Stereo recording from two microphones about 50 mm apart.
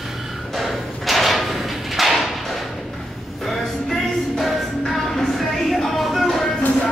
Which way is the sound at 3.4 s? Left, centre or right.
Centre.